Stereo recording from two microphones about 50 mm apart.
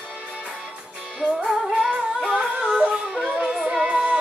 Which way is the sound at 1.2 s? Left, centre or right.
Centre.